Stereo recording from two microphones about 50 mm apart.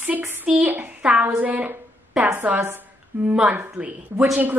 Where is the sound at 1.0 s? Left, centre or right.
Right.